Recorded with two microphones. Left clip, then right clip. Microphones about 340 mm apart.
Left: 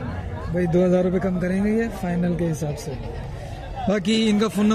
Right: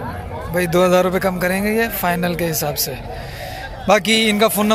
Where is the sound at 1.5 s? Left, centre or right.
Right.